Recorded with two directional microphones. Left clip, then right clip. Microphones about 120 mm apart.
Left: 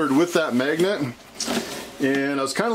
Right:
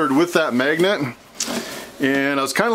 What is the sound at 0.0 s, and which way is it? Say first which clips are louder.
Speech: right 3 dB; 25° right (ahead or behind).